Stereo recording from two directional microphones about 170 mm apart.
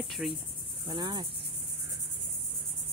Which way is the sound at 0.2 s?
Centre (ahead or behind).